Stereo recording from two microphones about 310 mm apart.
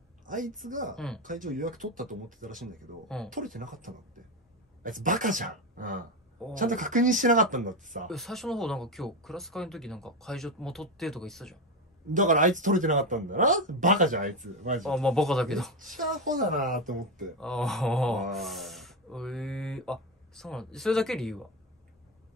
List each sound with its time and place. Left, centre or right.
0.2 s a woman's voice: right
0.9 s speech: centre
1.2 s speech: right
2.6 s speech: centre
3.5 s speech: right
8.1 s speech: centre
12.1 s speech: right
14.8 s speech: centre
16.0 s speech: right
17.4 s speech: centre